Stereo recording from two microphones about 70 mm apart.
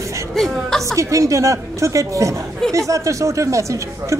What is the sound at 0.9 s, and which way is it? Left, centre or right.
Speech, right.